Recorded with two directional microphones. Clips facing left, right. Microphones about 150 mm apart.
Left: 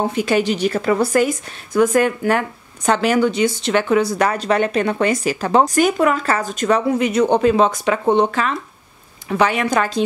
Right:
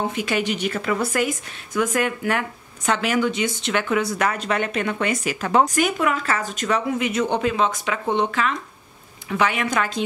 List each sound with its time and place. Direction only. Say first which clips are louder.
0.1 s a woman's voice: left 6 dB; 35° left (ahead or behind)